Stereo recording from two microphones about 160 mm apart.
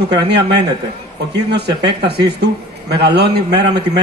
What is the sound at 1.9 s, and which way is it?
Speech, 90° right.